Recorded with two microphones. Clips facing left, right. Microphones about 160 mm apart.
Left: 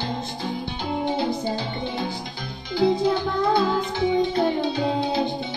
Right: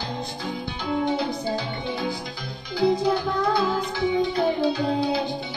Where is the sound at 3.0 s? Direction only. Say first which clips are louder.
Left 1 dB; 20° left (ahead or behind).